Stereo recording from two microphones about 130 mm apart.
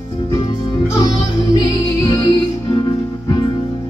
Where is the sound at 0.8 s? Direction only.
25° left (ahead or behind).